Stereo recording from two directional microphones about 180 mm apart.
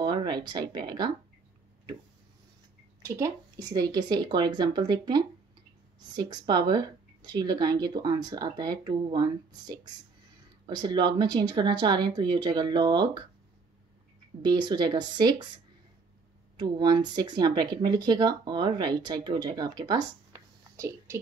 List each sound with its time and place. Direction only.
0.0 s speech: 25° right (ahead or behind)
3.0 s speech: 15° right (ahead or behind)
14.4 s speech: 25° right (ahead or behind)
16.5 s speech: 25° right (ahead or behind)